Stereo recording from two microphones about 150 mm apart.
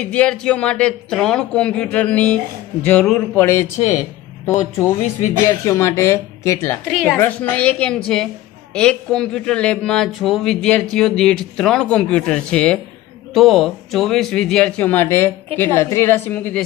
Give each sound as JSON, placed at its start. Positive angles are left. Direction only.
{"t": 0.0, "sound": "a man's voice", "side_deg": 10}